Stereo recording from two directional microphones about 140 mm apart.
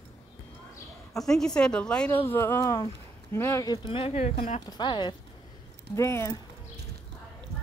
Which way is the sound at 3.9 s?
45° left (ahead or behind).